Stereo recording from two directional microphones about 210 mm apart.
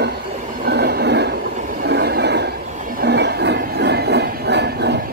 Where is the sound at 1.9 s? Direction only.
50° right (ahead or behind).